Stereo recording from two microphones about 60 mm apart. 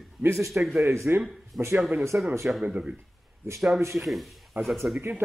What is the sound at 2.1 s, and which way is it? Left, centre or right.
Speech, right.